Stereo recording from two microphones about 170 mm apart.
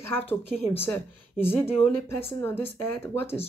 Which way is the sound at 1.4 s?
15° left (ahead or behind).